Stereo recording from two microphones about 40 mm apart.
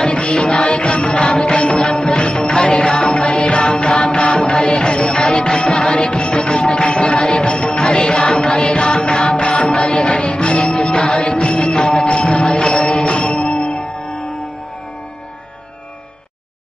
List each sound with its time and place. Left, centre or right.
0.0 s music: left
6.1 s music: centre
8.5 s music: left
12.1 s music: left
12.4 s mantra: centre
13.0 s music: left
13.3 s music: centre